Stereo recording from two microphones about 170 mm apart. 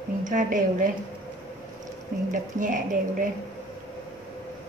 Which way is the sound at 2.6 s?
50° right (ahead or behind).